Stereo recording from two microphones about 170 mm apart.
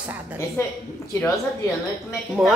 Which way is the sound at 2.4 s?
Centre (ahead or behind).